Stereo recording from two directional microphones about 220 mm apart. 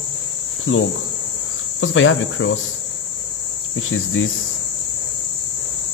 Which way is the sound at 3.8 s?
70° left (ahead or behind).